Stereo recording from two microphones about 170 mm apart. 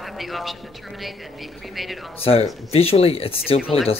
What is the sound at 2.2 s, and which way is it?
Speech, 35° left (ahead or behind).